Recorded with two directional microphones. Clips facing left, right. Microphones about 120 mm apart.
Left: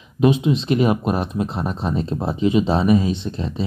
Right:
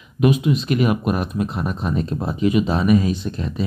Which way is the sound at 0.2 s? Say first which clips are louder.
Left 1 dB; 25° left (ahead or behind).